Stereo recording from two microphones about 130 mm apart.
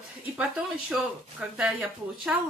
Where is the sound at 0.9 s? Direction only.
5° right (ahead or behind).